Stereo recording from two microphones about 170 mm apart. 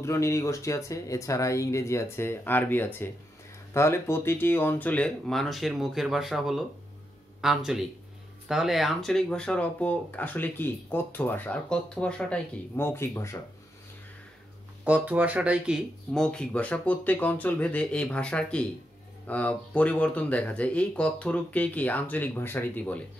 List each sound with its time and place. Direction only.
0.0 s speech: 15° left (ahead or behind)
14.9 s speech: 10° right (ahead or behind); by 23.0 s 10° left (ahead or behind)